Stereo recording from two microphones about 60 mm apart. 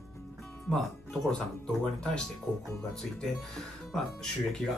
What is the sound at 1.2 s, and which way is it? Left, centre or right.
Speech, centre.